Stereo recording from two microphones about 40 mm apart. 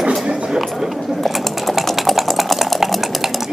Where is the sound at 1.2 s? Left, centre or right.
Centre.